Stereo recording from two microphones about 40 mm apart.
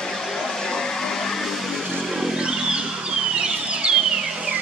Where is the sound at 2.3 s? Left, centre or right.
Centre.